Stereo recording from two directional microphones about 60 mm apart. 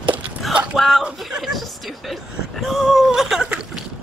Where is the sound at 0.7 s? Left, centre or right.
Centre.